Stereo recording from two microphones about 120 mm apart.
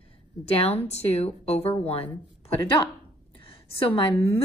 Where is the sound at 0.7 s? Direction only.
65° left (ahead or behind).